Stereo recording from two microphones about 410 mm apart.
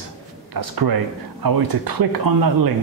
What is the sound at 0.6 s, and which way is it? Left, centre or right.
Speech, right.